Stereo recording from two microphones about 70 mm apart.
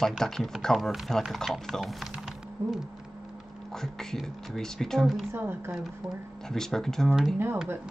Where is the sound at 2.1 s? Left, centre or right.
Centre.